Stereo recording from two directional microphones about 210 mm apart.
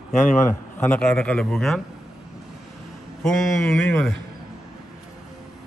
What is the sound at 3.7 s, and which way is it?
Speech, 5° left (ahead or behind).